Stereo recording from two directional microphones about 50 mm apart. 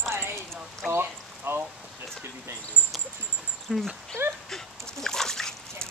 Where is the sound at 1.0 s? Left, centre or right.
Right.